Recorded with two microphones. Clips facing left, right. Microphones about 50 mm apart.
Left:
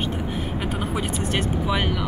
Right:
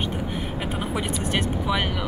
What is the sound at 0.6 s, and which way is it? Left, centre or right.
Speech, centre.